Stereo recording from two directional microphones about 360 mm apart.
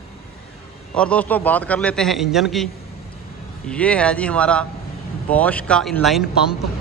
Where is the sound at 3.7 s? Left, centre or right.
Centre.